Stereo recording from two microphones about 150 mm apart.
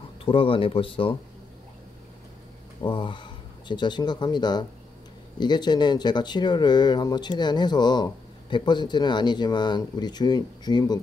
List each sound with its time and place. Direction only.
0.2 s speech: 35° left (ahead or behind)
2.8 s speech: 30° left (ahead or behind)